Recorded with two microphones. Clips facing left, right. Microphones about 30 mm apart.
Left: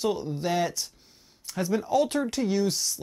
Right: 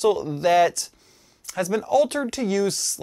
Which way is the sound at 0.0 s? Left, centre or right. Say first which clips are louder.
Right 7 dB; right.